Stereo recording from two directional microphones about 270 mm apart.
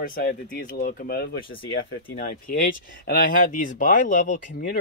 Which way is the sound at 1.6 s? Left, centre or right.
Left.